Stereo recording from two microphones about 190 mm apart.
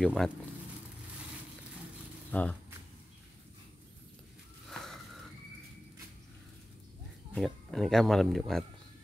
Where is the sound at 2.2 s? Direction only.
5° left (ahead or behind).